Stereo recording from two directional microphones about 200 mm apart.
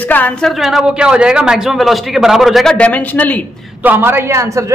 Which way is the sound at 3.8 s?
10° right (ahead or behind).